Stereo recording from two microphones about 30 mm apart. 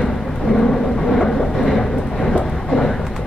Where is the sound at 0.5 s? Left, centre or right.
Centre.